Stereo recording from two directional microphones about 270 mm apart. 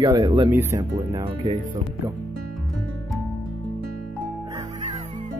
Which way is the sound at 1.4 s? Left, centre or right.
Right.